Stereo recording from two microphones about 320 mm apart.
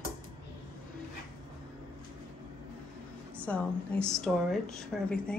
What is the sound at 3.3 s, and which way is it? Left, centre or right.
A woman's voice, centre.